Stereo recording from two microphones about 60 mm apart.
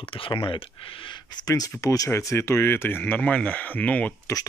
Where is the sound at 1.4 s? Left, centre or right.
Left.